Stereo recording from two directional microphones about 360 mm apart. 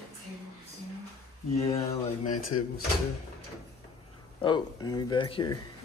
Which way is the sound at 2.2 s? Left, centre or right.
Left.